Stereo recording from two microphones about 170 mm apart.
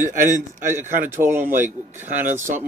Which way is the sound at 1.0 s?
15° right (ahead or behind).